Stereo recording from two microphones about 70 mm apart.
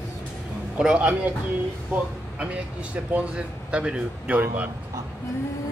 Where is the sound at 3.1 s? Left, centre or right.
Centre.